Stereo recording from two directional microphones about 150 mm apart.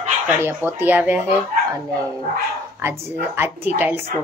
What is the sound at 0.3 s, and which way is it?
Speech, 10° right (ahead or behind).